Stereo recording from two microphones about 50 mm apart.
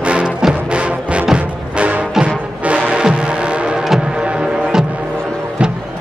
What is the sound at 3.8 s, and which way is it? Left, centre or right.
Music, centre.